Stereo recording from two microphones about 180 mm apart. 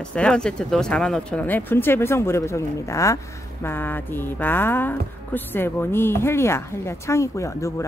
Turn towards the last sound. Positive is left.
turn(degrees=15)  # may be behind; listen again after turning